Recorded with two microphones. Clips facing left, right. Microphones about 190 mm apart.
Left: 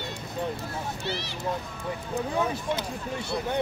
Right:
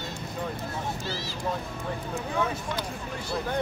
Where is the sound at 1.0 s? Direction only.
65° left (ahead or behind).